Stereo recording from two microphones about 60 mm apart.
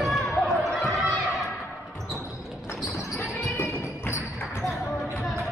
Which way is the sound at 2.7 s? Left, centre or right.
Centre.